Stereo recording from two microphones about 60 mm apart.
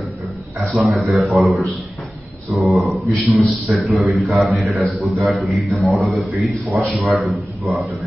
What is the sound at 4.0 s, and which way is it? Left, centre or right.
A man's voice, centre.